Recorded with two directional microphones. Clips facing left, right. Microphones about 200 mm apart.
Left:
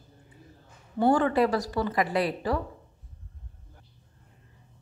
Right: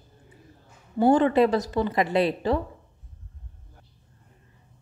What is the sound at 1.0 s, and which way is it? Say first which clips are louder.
A woman's voice: right 4 dB; 20° right (ahead or behind).